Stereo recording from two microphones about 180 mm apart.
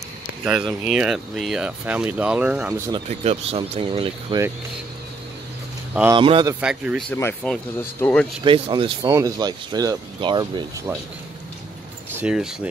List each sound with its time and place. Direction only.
0.4 s speech: centre (ahead or behind)
3.1 s speech: 35° right (ahead or behind)
6.1 s speech: 30° right (ahead or behind)
6.6 s speech: 5° right (ahead or behind)
7.1 s speech: 10° left (ahead or behind)
8.5 s speech: 30° right (ahead or behind)
12.1 s speech: 10° right (ahead or behind)